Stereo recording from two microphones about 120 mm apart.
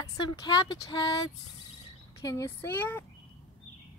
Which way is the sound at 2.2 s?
25° left (ahead or behind).